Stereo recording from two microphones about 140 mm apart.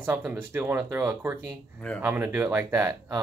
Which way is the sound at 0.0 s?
15° right (ahead or behind).